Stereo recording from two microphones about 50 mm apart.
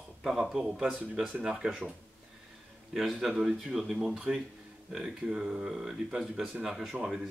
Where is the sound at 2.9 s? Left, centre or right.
Centre.